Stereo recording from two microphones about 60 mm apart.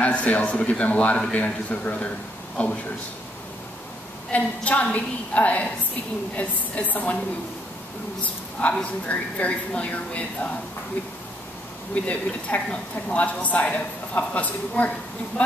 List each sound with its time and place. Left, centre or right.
0.0 s a woman's voice: left
4.3 s a woman's voice: left
8.2 s a woman's voice: left
11.9 s a woman's voice: left